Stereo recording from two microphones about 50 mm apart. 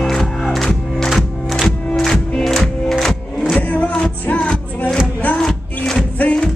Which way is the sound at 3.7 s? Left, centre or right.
Left.